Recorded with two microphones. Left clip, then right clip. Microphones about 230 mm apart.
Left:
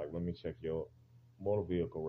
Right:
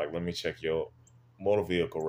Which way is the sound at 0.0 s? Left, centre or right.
Centre.